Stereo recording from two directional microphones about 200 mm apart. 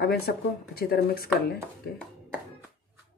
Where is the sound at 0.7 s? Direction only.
50° left (ahead or behind).